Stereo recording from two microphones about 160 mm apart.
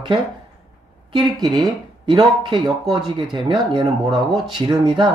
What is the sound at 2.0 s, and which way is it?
Speech, 30° right (ahead or behind).